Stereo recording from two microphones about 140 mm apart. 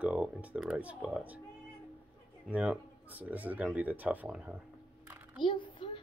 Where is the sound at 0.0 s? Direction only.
10° right (ahead or behind).